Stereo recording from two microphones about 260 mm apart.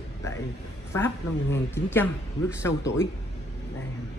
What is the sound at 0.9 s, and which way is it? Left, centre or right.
A man's voice, centre.